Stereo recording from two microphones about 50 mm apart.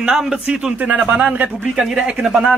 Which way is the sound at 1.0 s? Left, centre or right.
Right.